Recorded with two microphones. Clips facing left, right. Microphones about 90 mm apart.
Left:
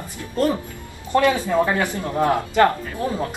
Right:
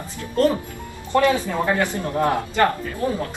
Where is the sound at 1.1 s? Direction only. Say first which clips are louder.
Left 1 dB; 15° left (ahead or behind).